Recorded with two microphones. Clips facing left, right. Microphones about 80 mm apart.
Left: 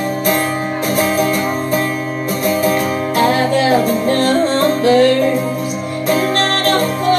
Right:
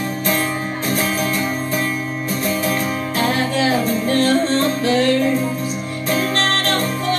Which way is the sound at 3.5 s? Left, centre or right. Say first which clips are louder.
Left 5 dB; left.